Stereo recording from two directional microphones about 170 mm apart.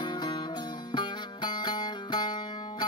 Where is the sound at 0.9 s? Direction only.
25° left (ahead or behind).